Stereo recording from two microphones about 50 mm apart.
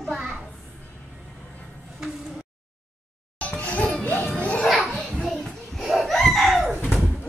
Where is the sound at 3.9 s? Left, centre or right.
Left.